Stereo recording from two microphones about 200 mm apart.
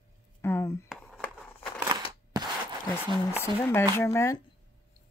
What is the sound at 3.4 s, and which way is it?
Speech, 10° left (ahead or behind).